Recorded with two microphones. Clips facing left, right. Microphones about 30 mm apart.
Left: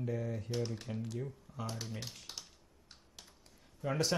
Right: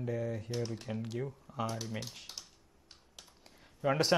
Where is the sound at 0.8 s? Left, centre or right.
Right.